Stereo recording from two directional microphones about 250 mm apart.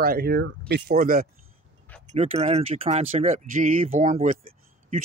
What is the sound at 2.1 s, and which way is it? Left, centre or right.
Speech, right.